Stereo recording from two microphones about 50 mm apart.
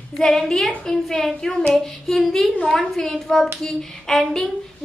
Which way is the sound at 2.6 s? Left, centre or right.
Centre.